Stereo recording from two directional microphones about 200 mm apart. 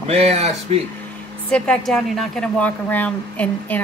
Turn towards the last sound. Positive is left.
turn(degrees=5)  # may be behind; listen again after turning